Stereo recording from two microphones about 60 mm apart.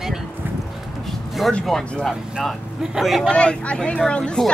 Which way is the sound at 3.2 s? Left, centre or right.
Centre.